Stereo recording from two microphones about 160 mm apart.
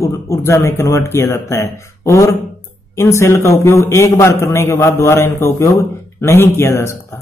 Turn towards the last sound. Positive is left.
turn(degrees=15)  # may be behind; listen again after turning